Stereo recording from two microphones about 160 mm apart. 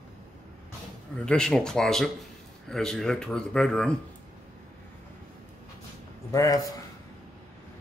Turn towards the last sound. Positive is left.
turn(degrees=20)  # may be behind; listen again after turning